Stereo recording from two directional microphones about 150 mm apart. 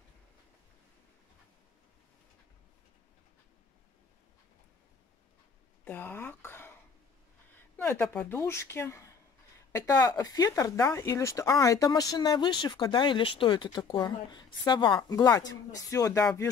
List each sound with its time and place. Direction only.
5.9 s speech: 10° left (ahead or behind)
7.7 s speech: 15° left (ahead or behind)